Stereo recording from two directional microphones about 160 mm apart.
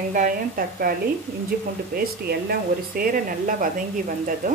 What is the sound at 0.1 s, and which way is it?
Speech, 55° right (ahead or behind).